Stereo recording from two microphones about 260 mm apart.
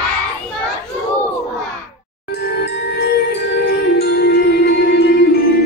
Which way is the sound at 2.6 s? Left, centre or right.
Left.